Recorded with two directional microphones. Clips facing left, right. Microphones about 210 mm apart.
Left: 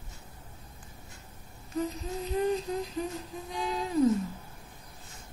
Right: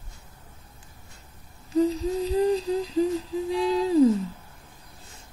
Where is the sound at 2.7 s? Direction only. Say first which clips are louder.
Right 9 dB; 30° right (ahead or behind).